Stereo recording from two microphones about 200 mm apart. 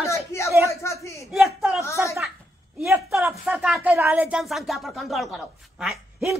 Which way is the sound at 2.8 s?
15° right (ahead or behind).